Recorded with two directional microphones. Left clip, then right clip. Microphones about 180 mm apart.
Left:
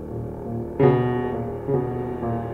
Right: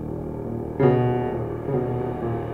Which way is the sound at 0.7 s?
25° left (ahead or behind).